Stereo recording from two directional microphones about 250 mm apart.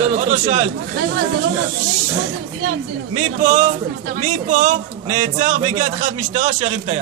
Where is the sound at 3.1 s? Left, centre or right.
Right.